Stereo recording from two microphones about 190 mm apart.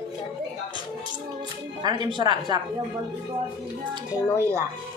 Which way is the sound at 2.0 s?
25° right (ahead or behind).